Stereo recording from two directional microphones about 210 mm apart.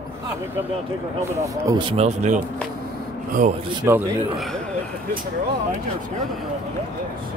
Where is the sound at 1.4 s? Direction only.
15° right (ahead or behind); by 2.3 s 30° right (ahead or behind).